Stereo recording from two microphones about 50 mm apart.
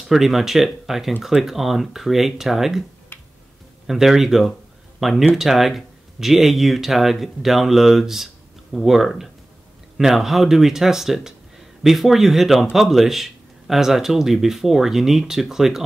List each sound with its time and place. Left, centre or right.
0.0 s speech: centre
3.1 s finger snapping: left
3.8 s speech: centre